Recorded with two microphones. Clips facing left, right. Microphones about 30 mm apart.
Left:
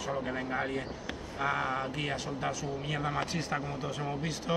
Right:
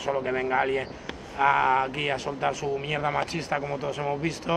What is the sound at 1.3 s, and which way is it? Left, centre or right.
Speech, right.